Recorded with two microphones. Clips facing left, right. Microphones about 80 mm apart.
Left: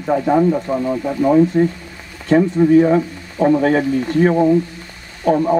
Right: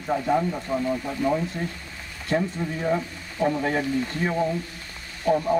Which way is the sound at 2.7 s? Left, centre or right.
Left.